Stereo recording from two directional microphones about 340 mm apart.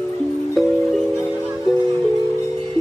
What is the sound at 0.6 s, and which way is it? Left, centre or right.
Music, centre.